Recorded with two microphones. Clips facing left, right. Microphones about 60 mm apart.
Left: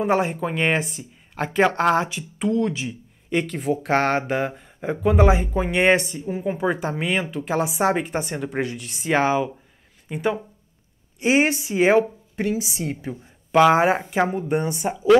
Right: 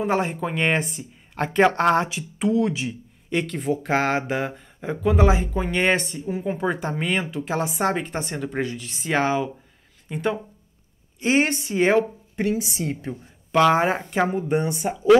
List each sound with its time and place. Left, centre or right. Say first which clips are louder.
0.0 s speech: left 2 dB; centre